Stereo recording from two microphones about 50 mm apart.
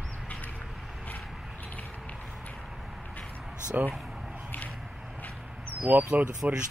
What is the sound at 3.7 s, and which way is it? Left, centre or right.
Speech, right.